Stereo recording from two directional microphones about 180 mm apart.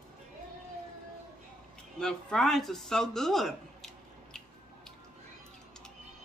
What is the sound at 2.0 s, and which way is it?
Speech, 5° left (ahead or behind).